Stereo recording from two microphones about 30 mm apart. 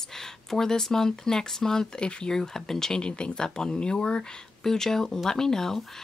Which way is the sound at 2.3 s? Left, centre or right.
Centre.